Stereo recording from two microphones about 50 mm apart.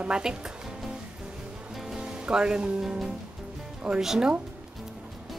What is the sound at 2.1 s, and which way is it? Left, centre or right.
A woman's voice, centre.